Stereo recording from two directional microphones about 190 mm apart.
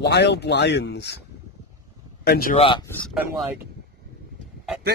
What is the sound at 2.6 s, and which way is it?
Speech, 25° left (ahead or behind).